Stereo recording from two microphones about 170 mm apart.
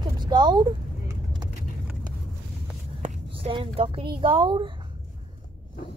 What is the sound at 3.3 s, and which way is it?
Speech, 30° right (ahead or behind).